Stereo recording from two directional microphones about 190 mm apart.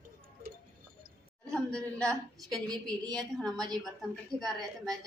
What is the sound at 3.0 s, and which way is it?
Speech, 20° right (ahead or behind).